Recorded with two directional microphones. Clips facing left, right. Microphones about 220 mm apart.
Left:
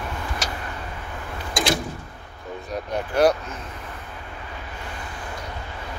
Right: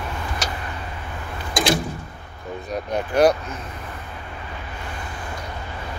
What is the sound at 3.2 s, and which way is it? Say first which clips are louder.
Vehicle: right 2 dB; 15° right (ahead or behind).